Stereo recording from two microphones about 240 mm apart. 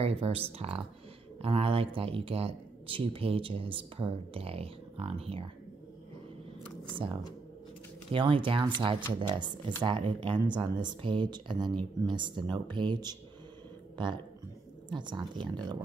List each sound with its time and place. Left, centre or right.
0.0 s speech: right
8.1 s speech: right